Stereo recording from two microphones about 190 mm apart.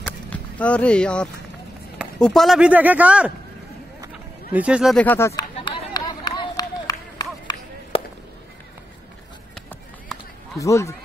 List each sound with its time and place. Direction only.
0.0 s a sound: 5° left (ahead or behind)
2.0 s speech: 5° left (ahead or behind)
4.1 s a sound: 5° right (ahead or behind)
5.0 s speech: 10° left (ahead or behind)
5.6 s run: 25° left (ahead or behind)
7.9 s chop: 30° left (ahead or behind)
9.7 s run: centre (ahead or behind)
10.6 s speech: 15° left (ahead or behind)